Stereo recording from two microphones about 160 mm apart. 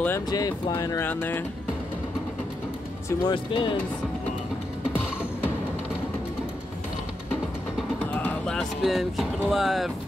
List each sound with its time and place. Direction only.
0.3 s speech: 25° left (ahead or behind)
3.1 s speech: 30° left (ahead or behind)
8.0 s speech: 10° left (ahead or behind)